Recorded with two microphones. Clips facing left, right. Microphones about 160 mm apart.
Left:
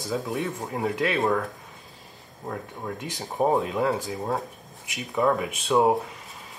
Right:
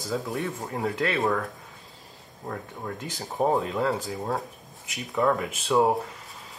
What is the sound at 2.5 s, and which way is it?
Speech, 5° left (ahead or behind).